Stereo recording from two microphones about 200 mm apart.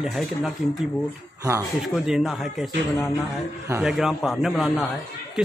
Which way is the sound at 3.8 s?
Centre (ahead or behind).